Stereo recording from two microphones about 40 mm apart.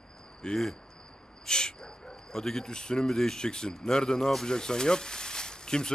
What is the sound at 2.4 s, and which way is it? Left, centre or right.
A man's voice, centre.